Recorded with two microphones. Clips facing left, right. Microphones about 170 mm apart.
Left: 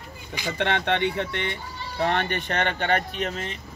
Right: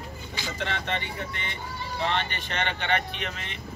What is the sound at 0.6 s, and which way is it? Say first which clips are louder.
Speech: left 9 dB; 65° left (ahead or behind).